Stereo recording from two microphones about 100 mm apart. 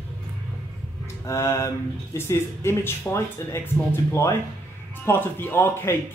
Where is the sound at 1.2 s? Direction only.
30° left (ahead or behind).